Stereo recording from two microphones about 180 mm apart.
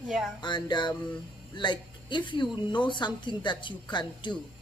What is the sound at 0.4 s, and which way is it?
Speech, 25° left (ahead or behind).